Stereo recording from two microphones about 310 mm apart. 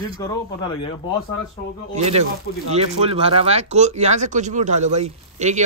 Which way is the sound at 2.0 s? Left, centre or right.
Right.